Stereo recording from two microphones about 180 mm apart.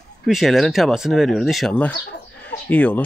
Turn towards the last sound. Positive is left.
turn(degrees=10)  # may be behind; listen again after turning